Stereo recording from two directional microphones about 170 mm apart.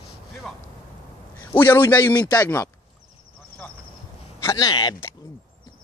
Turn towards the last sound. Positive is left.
turn(degrees=25)  # may be behind; listen again after turning